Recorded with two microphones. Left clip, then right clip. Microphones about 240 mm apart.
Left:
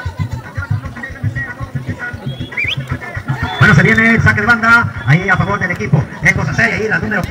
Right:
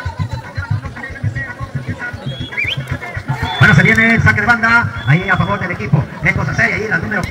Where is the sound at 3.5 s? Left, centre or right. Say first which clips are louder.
Even; left.